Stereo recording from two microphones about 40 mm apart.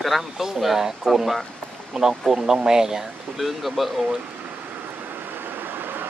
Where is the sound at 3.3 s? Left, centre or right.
Centre.